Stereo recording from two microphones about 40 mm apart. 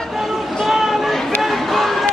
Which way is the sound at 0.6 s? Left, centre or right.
Centre.